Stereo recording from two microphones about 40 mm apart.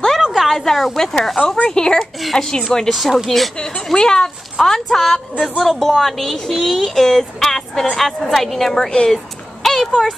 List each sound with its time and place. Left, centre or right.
0.3 s a sound: centre
0.9 s a woman's voice: centre
2.9 s a woman's voice: centre
3.9 s a woman's voice: centre
6.4 s a woman's voice: centre
9.1 s a sound: centre